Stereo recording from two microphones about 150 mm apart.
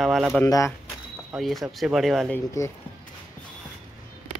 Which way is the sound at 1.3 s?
Centre (ahead or behind).